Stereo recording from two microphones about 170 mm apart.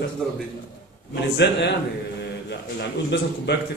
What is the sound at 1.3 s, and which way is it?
A man's voice, 85° left.